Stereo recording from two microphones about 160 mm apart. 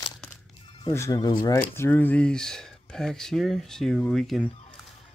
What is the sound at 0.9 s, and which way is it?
Speech, 20° left (ahead or behind).